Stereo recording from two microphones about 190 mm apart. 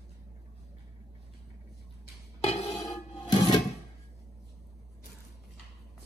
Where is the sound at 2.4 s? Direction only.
35° left (ahead or behind).